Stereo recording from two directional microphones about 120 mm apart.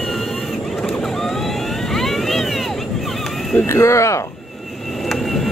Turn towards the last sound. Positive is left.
turn(degrees=0)  # may be behind; listen again after turning